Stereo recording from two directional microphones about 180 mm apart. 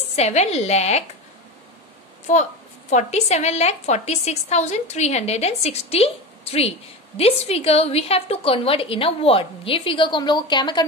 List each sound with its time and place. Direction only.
0.1 s a woman's voice: 35° left (ahead or behind)
2.3 s a woman's voice: 40° left (ahead or behind); by 10.9 s 25° left (ahead or behind)